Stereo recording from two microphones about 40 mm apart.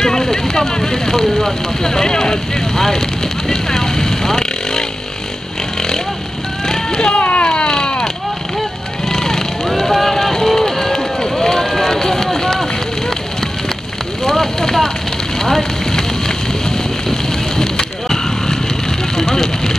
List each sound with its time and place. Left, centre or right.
0.0 s vehicle: centre
1.8 s speech: centre
3.4 s vehicle: centre
7.1 s a sound: left
9.1 s vehicle: centre
10.6 s run: centre
14.2 s a sound: centre
15.4 s fire: centre
17.1 s vehicle: centre